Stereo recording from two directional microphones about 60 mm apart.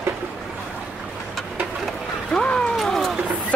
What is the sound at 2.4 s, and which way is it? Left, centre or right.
Cat, centre.